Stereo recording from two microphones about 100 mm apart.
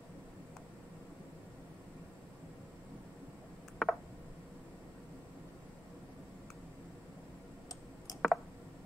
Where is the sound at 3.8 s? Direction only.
Centre (ahead or behind).